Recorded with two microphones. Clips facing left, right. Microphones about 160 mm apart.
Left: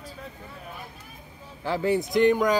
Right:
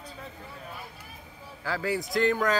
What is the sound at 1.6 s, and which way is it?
Speech, 25° left (ahead or behind).